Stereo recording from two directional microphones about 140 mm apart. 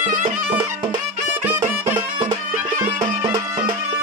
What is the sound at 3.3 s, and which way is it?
Music, 30° right (ahead or behind).